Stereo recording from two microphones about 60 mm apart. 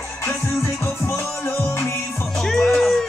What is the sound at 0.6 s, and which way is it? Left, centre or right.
Music, left.